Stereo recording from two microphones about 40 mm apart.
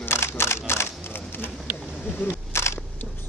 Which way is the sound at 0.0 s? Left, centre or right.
Left.